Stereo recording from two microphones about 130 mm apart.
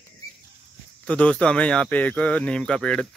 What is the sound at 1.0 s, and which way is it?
Speech, 10° left (ahead or behind).